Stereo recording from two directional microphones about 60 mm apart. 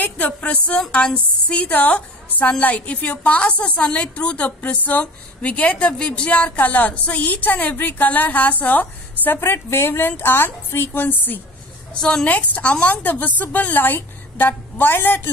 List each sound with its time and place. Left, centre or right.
0.4 s a woman's voice: centre
11.9 s a woman's voice: centre
12.3 s a woman's voice: left